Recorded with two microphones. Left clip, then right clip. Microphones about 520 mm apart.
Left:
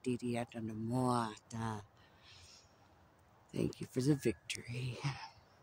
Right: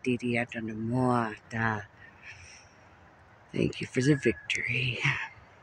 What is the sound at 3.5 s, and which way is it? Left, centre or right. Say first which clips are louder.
Speech: right 9 dB; left.